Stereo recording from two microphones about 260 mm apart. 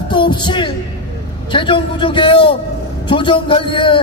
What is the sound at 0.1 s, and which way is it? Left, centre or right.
Music, centre.